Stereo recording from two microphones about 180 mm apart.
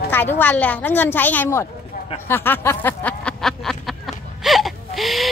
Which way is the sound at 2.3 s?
10° left (ahead or behind).